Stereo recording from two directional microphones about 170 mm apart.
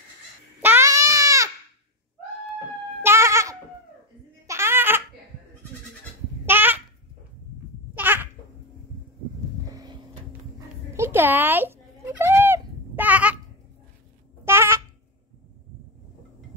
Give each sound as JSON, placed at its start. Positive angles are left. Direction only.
{"t": 0.6, "sound": "a sound", "side_deg": -15}
{"t": 3.0, "sound": "goat", "side_deg": -15}
{"t": 4.5, "sound": "baby laughter", "side_deg": -15}
{"t": 6.4, "sound": "babbling", "side_deg": -10}
{"t": 7.9, "sound": "babbling", "side_deg": -10}
{"t": 9.7, "sound": "a sound", "side_deg": -20}
{"t": 14.4, "sound": "babbling", "side_deg": -15}